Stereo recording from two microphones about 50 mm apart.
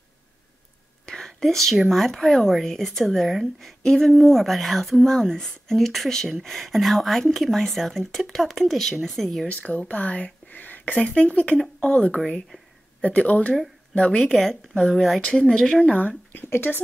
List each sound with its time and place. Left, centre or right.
1.0 s whispering: centre
1.4 s speech: centre
9.5 s speech: left
10.9 s speech: left
14.3 s speech: centre
15.8 s speech: left
16.4 s speech: left